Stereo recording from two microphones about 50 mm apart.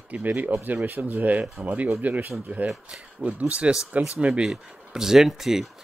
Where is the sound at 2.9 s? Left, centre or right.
Right.